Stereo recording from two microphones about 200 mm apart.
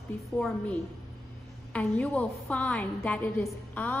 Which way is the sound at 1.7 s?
5° left (ahead or behind).